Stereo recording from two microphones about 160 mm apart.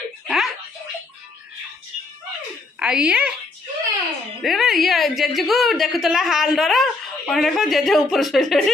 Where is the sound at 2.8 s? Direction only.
5° right (ahead or behind).